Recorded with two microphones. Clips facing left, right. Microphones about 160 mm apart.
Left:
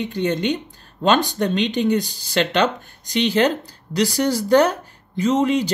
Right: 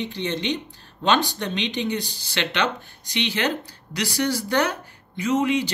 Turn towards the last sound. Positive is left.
turn(degrees=40)  # may be behind; listen again after turning